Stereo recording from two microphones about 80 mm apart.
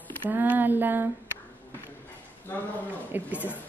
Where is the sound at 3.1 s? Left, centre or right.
Right.